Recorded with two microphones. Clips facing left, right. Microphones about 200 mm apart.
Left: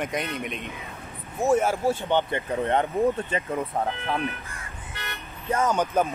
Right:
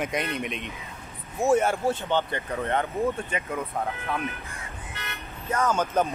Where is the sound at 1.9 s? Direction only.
20° left (ahead or behind).